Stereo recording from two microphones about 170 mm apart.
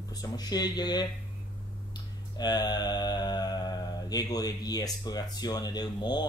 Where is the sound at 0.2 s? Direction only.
25° left (ahead or behind).